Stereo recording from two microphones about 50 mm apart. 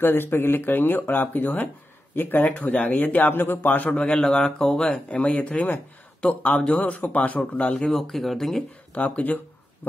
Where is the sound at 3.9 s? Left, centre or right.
Centre.